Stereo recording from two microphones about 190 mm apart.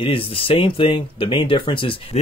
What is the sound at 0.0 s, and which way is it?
Speech, 30° left (ahead or behind).